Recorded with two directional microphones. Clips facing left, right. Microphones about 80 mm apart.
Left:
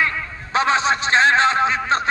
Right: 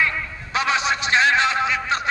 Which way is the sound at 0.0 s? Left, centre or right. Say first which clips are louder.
Left 1 dB; left.